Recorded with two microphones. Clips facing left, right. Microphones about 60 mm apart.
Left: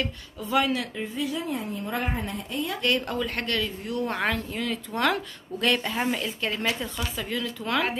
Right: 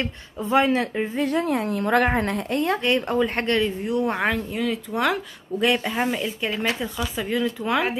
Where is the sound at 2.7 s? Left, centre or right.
Right.